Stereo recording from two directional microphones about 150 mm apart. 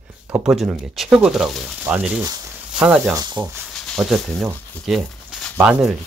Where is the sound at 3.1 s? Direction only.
25° right (ahead or behind).